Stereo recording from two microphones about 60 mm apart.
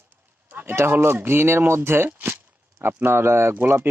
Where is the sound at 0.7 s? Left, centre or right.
Right.